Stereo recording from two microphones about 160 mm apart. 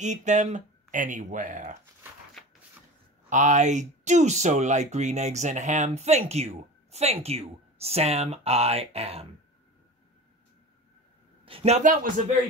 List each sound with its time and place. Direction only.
0.0 s speech: 50° right (ahead or behind)
3.3 s speech: 50° right (ahead or behind)
11.4 s speech: 40° right (ahead or behind); by 12.1 s 55° right (ahead or behind)